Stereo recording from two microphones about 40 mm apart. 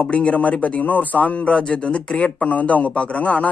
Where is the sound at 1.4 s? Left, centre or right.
Left.